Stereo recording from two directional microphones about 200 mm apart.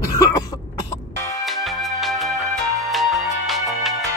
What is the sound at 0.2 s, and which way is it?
Cough, 15° left (ahead or behind).